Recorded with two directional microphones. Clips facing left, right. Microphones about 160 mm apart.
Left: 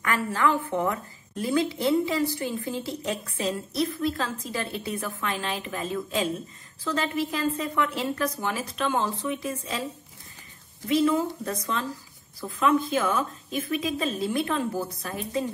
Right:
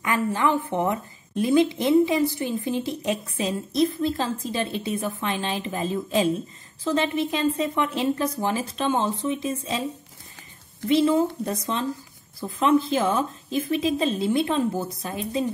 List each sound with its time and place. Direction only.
0.0 s a woman's voice: 15° right (ahead or behind)
10.9 s a woman's voice: 25° right (ahead or behind)